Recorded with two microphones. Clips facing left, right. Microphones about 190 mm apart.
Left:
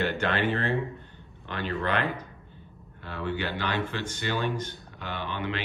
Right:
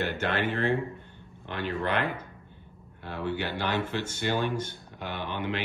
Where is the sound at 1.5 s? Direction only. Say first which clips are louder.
Even; 15° right (ahead or behind).